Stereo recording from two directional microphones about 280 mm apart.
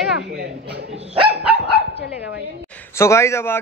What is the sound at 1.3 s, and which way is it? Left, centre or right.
Dog, centre.